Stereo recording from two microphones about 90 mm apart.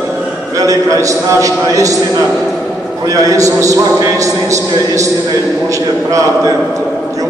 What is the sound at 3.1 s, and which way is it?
A man's voice, 40° right (ahead or behind).